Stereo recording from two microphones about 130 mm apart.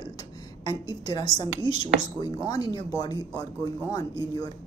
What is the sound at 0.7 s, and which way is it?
Speech, 30° left (ahead or behind).